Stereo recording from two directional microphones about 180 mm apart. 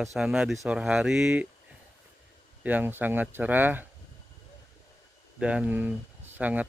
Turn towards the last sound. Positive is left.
turn(degrees=-10)  # may be behind; listen again after turning